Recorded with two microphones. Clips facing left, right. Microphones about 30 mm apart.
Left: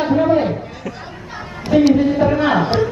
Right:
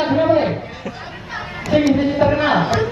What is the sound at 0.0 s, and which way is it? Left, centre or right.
Speech, right.